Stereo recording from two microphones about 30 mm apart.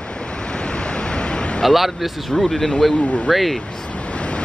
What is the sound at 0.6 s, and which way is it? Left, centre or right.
Waves, left.